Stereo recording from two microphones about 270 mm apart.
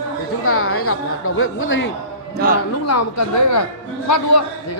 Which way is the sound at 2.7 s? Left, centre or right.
Left.